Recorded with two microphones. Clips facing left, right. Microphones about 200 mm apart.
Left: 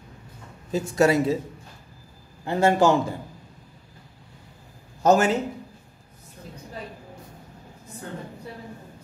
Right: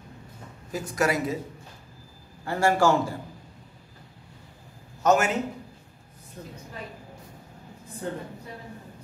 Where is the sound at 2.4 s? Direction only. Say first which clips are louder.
Left 3 dB; 20° left (ahead or behind).